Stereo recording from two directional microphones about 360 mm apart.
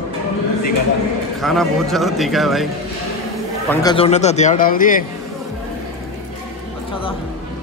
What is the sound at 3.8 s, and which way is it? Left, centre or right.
Speech, centre.